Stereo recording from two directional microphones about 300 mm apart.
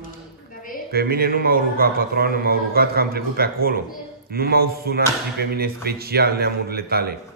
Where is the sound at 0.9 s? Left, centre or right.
Right.